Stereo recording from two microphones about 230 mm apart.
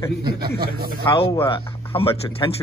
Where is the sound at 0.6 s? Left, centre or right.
Right.